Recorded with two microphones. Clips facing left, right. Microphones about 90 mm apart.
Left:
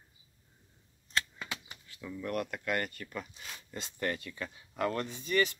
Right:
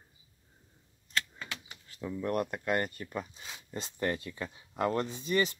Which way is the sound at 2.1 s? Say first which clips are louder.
Right 3 dB; 30° right (ahead or behind).